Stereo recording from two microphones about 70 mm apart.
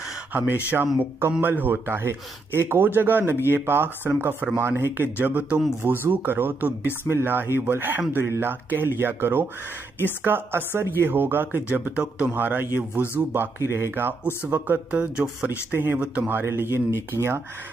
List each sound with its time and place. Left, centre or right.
0.3 s speech: right
11.9 s speech: centre
12.3 s speech: right
15.7 s speech: right